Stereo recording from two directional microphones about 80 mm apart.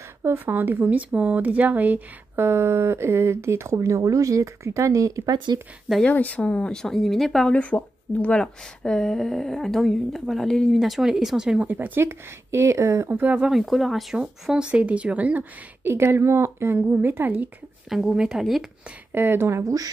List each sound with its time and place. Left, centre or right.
0.2 s a woman's voice: right
2.4 s speech: right
5.3 s speech: right
6.0 s speech: centre
7.5 s speech: centre
11.6 s a woman's voice: right
12.0 s speech: right
13.1 s a woman's voice: right
13.5 s a woman's voice: centre; by 17.5 s right
17.8 s speech: centre
19.1 s speech: right